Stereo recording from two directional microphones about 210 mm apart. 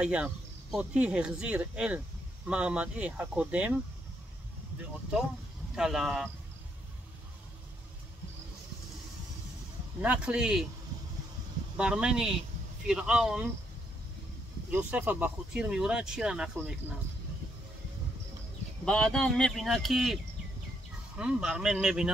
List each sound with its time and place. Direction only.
0.0 s speech: 5° right (ahead or behind)
5.8 s speech: centre (ahead or behind)
10.0 s speech: 5° right (ahead or behind)
11.7 s speech: 5° right (ahead or behind)
14.7 s speech: 5° right (ahead or behind)
18.9 s speech: 5° left (ahead or behind)
21.2 s speech: 5° right (ahead or behind)